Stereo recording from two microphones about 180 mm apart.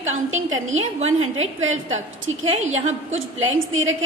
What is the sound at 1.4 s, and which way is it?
A woman's voice, 90° right.